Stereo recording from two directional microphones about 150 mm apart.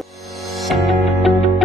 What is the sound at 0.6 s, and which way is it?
Music, centre (ahead or behind).